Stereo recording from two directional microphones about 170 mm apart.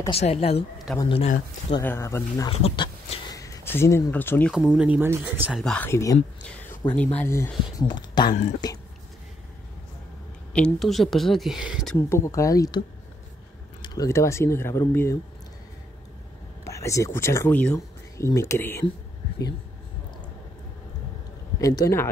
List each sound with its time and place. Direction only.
0.1 s speech: 35° left (ahead or behind)
1.8 s speech: 15° left (ahead or behind)
2.5 s a sound: 30° left (ahead or behind); by 4.6 s 10° left (ahead or behind)
4.6 s speech: 5° right (ahead or behind)
5.6 s speech: 5° left (ahead or behind)
5.9 s speech: 20° left (ahead or behind)
6.4 s a sound: 5° left (ahead or behind)
7.0 s speech: 10° left (ahead or behind)
7.9 s speech: 25° left (ahead or behind)
10.5 s speech: 5° left (ahead or behind)
12.1 s speech: 20° left (ahead or behind)
13.8 s speech: 20° left (ahead or behind)
16.6 s speech: 20° left (ahead or behind)
21.5 s speech: 20° left (ahead or behind)